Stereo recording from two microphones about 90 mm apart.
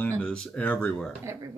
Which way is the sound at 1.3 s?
30° right (ahead or behind).